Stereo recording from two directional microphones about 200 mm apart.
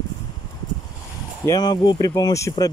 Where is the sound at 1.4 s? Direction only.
20° left (ahead or behind).